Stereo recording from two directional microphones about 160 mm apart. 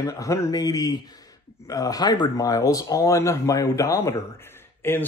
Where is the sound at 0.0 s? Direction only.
20° left (ahead or behind).